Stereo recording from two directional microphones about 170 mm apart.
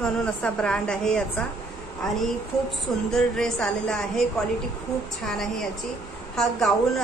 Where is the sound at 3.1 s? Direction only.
5° left (ahead or behind).